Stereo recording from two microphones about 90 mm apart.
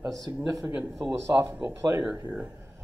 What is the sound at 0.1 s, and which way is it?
A man's voice, 45° right (ahead or behind).